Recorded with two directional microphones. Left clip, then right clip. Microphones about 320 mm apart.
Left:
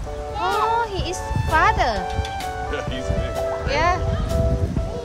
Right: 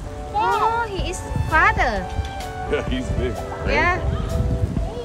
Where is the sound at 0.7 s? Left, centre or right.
Centre.